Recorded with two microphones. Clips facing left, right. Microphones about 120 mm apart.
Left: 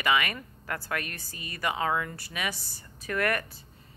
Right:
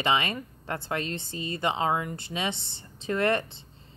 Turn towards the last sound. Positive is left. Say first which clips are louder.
# right 3 dB
turn(degrees=-25)  # may be behind; listen again after turning